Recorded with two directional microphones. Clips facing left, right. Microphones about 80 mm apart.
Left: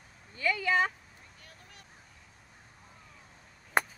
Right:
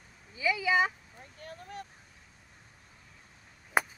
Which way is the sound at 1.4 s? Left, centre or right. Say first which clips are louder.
Right 16 dB; right.